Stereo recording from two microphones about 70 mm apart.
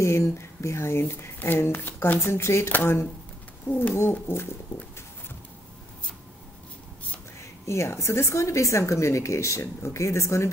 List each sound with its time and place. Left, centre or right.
0.0 s speech: left
7.6 s a woman's voice: left